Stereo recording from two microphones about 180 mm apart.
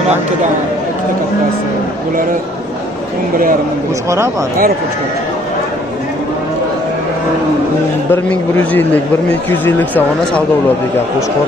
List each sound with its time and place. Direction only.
8.1 s speech: 10° left (ahead or behind)